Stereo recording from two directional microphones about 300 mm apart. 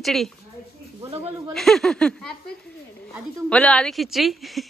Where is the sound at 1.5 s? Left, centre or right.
Centre.